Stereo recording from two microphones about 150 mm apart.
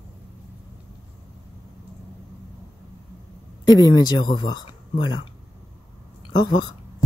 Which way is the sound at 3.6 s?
30° left (ahead or behind).